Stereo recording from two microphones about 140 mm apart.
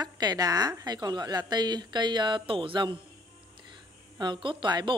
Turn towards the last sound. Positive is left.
turn(degrees=-35)  # may be behind; listen again after turning